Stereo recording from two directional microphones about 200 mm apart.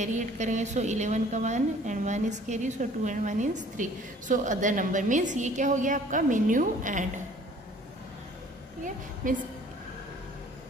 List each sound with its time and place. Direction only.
0.0 s a woman's voice: 35° right (ahead or behind)
8.8 s a woman's voice: 40° right (ahead or behind)